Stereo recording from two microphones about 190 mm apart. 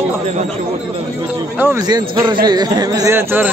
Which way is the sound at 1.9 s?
20° right (ahead or behind).